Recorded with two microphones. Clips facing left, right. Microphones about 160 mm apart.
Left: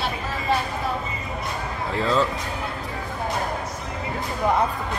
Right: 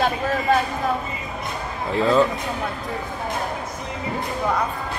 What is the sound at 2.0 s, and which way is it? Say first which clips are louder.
Speech: right 5 dB; 15° right (ahead or behind).